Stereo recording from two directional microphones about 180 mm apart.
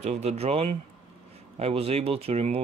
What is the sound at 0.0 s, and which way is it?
Speech, 40° right (ahead or behind).